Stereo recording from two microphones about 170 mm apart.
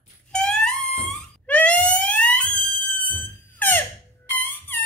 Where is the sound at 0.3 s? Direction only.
5° left (ahead or behind).